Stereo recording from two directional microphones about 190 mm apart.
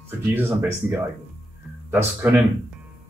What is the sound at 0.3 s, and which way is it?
Speech, 10° right (ahead or behind).